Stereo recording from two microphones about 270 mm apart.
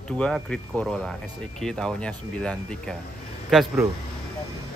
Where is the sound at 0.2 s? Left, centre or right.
Centre.